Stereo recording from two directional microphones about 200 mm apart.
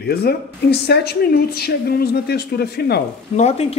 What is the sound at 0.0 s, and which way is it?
A woman's voice, 50° left (ahead or behind).